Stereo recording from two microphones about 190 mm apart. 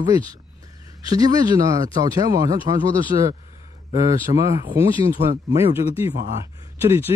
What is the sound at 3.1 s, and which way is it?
Speech, 35° right (ahead or behind).